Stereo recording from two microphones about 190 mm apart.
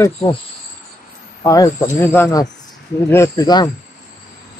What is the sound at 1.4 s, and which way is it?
Speech, 20° left (ahead or behind).